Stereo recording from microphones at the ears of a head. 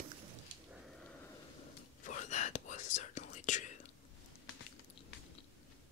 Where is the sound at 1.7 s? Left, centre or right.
Left.